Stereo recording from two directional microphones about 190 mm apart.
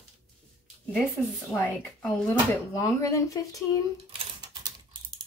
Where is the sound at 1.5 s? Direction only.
10° left (ahead or behind).